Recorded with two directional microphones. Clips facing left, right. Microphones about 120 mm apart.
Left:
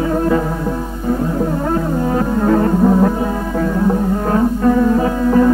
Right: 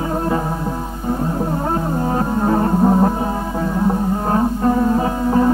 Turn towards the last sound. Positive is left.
turn(degrees=-25)  # may be behind; listen again after turning